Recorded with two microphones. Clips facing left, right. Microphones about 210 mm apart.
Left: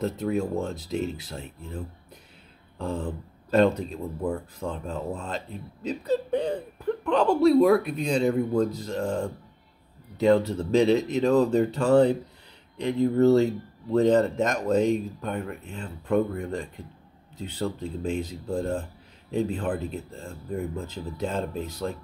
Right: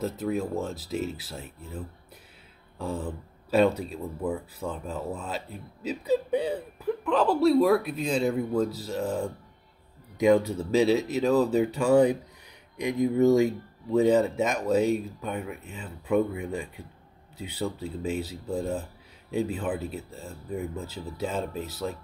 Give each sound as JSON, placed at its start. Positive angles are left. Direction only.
{"t": 0.0, "sound": "speech", "side_deg": 0}
{"t": 2.8, "sound": "speech", "side_deg": -5}